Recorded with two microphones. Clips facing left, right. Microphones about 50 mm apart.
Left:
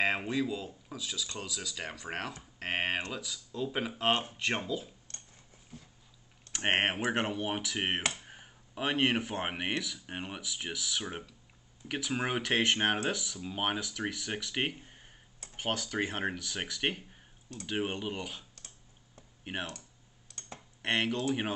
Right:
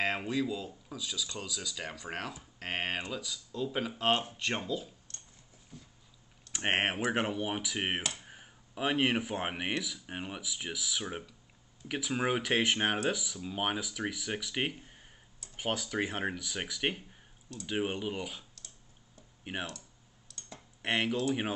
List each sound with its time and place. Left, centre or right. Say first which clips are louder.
0.0 s speech: left 1 dB; centre
6.5 s speech: left 1 dB; centre
8.2 s a sound: left 1 dB; centre
9.5 s speech: even; centre
14.8 s a sound: even; centre
15.5 s speech: even; centre
19.5 s speech: even; centre
20.2 s computer keyboard: left 2 dB; left
20.8 s speech: even; centre